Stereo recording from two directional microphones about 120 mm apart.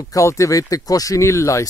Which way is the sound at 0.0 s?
25° left (ahead or behind).